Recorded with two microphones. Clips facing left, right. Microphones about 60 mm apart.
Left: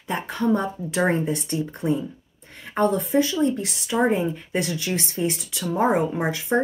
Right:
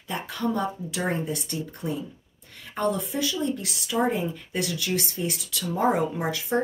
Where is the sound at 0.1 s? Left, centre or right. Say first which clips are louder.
Left 5 dB; left.